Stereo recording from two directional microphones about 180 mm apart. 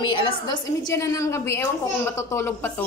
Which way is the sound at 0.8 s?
15° left (ahead or behind).